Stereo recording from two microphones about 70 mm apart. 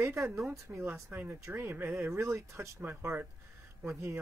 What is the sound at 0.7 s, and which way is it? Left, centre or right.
Speech, right.